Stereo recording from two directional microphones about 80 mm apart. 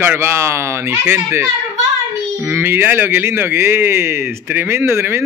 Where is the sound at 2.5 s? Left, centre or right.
Right.